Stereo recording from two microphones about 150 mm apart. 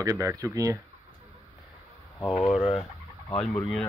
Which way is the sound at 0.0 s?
20° right (ahead or behind).